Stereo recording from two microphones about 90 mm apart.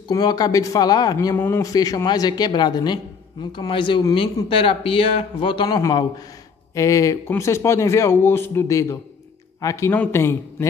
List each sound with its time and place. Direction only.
0.1 s speech: 45° left (ahead or behind)
1.3 s a man's voice: 25° left (ahead or behind)
1.6 s a man's voice: 45° left (ahead or behind); by 4.0 s 65° left (ahead or behind)
4.5 s speech: 85° left; by 5.8 s 65° left (ahead or behind)
5.8 s a man's voice: 40° left (ahead or behind)
9.8 s a man's voice: 25° left (ahead or behind)